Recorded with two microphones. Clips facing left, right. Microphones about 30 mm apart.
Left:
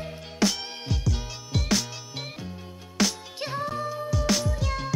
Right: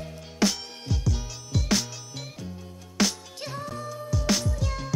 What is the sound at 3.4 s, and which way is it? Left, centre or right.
Music, left.